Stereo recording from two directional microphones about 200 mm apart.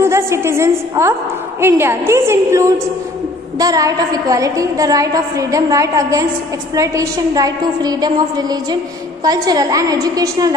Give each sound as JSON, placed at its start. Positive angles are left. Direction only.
{"t": 0.0, "sound": "a woman's voice", "side_deg": -15}